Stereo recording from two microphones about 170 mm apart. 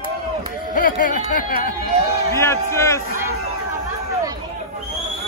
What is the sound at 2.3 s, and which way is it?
Speech, 15° left (ahead or behind).